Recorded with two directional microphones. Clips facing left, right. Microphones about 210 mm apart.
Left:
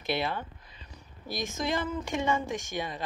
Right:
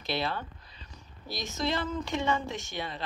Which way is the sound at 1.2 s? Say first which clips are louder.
Left 3 dB; 50° left (ahead or behind).